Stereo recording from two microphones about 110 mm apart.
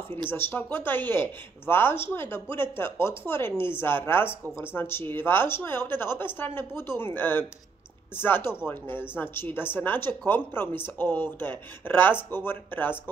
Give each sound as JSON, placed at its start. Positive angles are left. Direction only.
{"t": 0.3, "sound": "speech", "side_deg": 20}